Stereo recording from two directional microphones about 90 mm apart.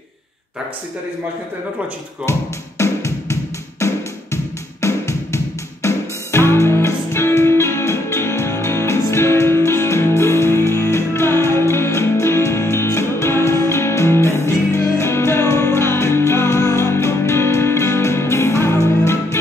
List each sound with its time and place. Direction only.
2.8 s music: 35° left (ahead or behind)